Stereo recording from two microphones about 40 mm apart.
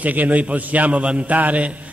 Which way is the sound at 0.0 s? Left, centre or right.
Right.